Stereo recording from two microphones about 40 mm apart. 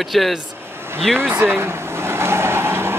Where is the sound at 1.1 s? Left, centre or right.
Right.